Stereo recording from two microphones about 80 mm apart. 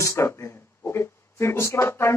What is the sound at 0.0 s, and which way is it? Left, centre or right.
Speech, left.